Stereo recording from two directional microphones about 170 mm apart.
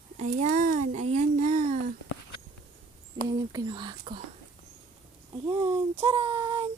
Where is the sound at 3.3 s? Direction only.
25° right (ahead or behind).